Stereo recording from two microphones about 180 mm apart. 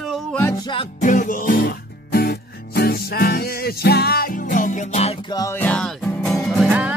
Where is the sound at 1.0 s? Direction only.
45° left (ahead or behind).